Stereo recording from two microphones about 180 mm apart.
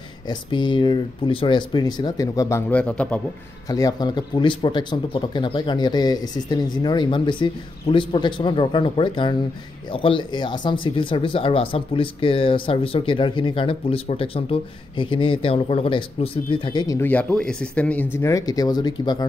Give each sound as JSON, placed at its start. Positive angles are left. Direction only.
{"t": 0.3, "sound": "speech", "side_deg": 25}
{"t": 2.7, "sound": "a man's voice", "side_deg": 5}
{"t": 3.6, "sound": "speech", "side_deg": 20}